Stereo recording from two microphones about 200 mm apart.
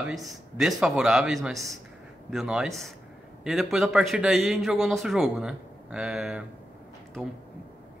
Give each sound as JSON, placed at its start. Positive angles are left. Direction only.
{"t": 0.0, "sound": "a man's voice", "side_deg": 0}